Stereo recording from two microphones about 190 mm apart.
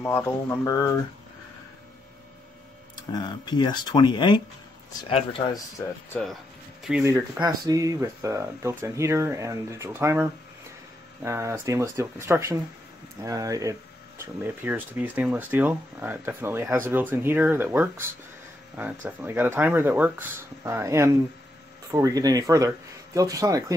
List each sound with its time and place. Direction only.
0.0 s speech: 10° left (ahead or behind)
3.0 s speech: 20° left (ahead or behind)
6.1 s speech: 5° left (ahead or behind)
7.1 s speech: 20° right (ahead or behind)